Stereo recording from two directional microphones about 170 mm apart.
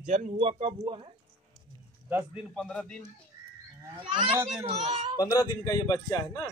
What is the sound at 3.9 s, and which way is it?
A child's voice, 30° right (ahead or behind).